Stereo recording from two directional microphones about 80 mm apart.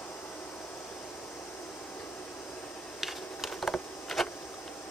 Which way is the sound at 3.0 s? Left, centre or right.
Centre.